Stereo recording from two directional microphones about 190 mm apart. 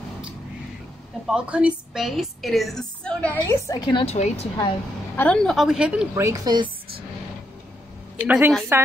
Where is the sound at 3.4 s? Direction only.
20° left (ahead or behind).